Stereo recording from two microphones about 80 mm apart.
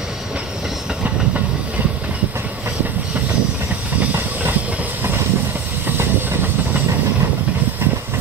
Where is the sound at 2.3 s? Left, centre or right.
Right.